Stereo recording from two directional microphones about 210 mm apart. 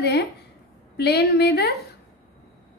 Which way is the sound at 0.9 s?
50° left (ahead or behind).